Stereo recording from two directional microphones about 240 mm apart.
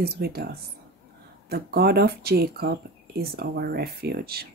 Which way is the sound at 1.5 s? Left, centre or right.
Right.